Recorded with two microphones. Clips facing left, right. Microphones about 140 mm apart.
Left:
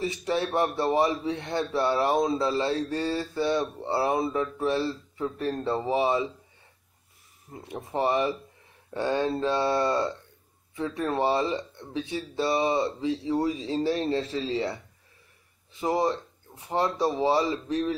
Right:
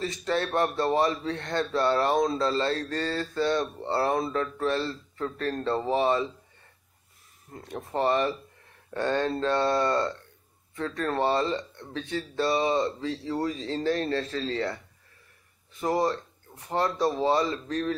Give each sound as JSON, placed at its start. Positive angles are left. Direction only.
{"t": 0.0, "sound": "speech", "side_deg": 15}
{"t": 7.5, "sound": "speech", "side_deg": 15}
{"t": 15.8, "sound": "speech", "side_deg": 15}